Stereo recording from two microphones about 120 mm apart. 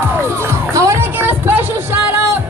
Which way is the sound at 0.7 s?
25° right (ahead or behind).